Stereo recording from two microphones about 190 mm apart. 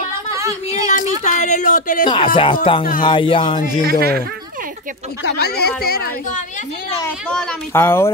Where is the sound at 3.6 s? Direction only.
45° left (ahead or behind).